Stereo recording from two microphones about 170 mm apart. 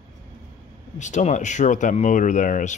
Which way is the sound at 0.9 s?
45° left (ahead or behind).